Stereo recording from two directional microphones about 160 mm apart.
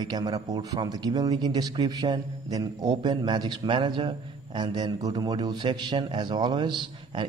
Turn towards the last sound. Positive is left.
turn(degrees=-30)  # may be behind; listen again after turning